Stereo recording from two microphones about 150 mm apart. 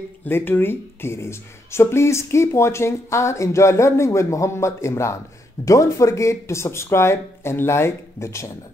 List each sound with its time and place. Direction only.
0.2 s speech: 15° left (ahead or behind)